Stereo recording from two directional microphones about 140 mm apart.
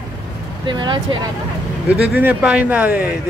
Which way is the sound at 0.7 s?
35° right (ahead or behind).